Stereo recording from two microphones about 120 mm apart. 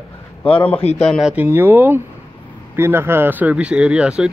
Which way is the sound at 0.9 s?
5° left (ahead or behind).